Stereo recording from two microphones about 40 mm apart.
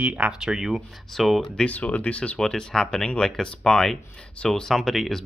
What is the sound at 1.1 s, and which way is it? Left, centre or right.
Speech, centre.